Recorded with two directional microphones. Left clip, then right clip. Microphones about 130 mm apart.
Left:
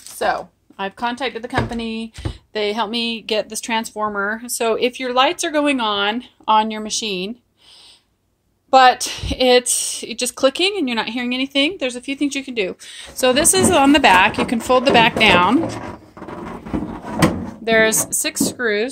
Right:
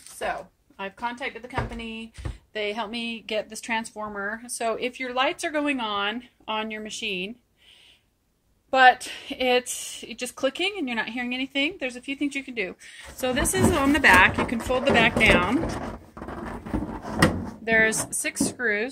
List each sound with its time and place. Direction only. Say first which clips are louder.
0.2 s speech: left 10 dB; 80° left
1.5 s speech: left 9 dB; 90° left
2.5 s a woman's voice: left 8 dB; 55° left (ahead or behind)
8.6 s a woman's voice: left 6 dB; 35° left (ahead or behind)
13.7 s a woman's voice: left 5 dB; 40° left (ahead or behind)
17.6 s a woman's voice: left 6 dB; 40° left (ahead or behind)